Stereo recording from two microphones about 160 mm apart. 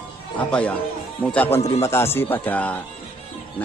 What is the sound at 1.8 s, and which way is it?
Speech, 15° left (ahead or behind).